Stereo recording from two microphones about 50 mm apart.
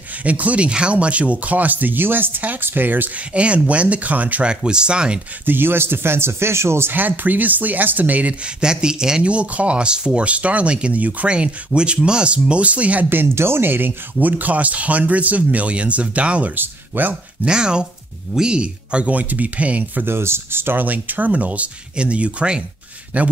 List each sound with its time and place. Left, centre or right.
0.2 s speech: right
3.2 s speech: right
4.5 s speech: centre
5.4 s speech: right
6.9 s speech: right
8.6 s speech: centre
9.3 s speech: right
11.2 s speech: right
13.3 s speech: right
16.5 s speech: right
17.5 s speech: centre
20.1 s speech: right